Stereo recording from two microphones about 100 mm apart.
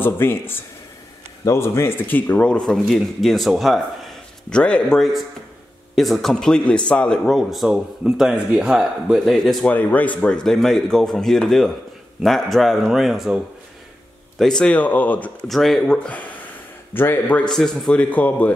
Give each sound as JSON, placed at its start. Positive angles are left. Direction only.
{"t": 0.0, "sound": "a man's voice", "side_deg": 20}
{"t": 4.6, "sound": "a man's voice", "side_deg": 10}
{"t": 9.7, "sound": "a man's voice", "side_deg": 15}
{"t": 14.4, "sound": "speech", "side_deg": 5}
{"t": 15.4, "sound": "speech", "side_deg": 0}
{"t": 17.5, "sound": "speech", "side_deg": 5}